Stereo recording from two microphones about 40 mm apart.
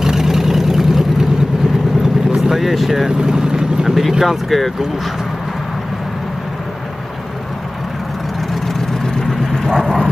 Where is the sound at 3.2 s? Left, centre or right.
Centre.